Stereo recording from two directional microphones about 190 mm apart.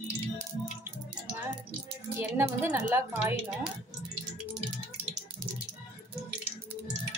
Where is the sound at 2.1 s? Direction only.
10° right (ahead or behind).